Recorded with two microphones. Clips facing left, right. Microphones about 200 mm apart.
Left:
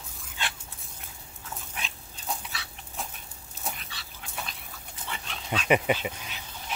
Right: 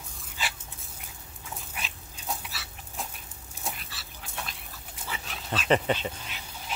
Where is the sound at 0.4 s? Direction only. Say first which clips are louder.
Even; 5° right (ahead or behind).